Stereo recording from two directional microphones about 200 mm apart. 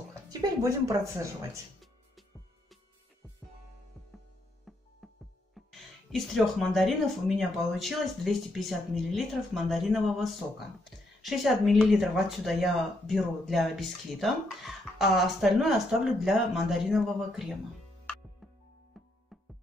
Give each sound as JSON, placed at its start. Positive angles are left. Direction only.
{"t": 0.3, "sound": "speech", "side_deg": -15}
{"t": 4.7, "sound": "music", "side_deg": 0}
{"t": 5.7, "sound": "speech", "side_deg": 0}